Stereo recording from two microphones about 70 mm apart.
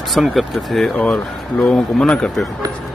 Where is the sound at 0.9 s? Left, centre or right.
Left.